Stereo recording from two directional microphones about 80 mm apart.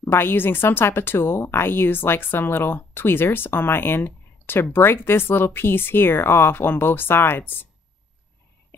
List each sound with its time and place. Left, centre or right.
0.0 s speech: left